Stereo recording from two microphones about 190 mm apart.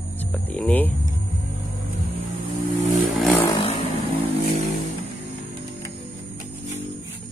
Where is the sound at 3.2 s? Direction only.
10° left (ahead or behind).